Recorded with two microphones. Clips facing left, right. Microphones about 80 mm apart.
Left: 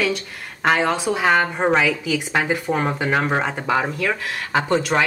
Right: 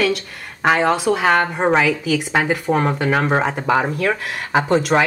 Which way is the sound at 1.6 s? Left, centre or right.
Centre.